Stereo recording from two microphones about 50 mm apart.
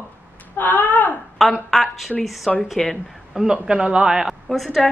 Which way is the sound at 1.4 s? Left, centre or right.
Centre.